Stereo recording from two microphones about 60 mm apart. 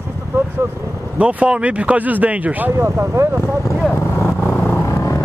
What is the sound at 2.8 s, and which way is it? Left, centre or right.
Speech, right.